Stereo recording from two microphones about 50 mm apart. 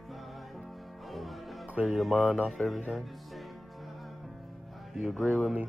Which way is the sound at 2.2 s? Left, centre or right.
Centre.